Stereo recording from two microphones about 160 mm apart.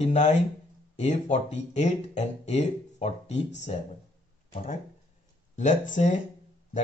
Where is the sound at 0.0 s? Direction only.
45° left (ahead or behind).